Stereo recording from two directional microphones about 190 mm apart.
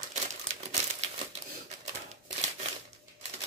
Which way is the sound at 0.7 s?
35° right (ahead or behind).